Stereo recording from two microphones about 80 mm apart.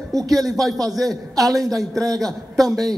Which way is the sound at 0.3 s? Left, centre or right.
Centre.